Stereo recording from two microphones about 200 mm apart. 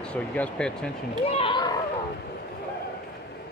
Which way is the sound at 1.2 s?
30° left (ahead or behind).